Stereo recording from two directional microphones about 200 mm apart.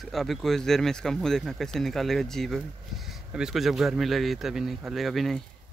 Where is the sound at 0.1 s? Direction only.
Centre (ahead or behind).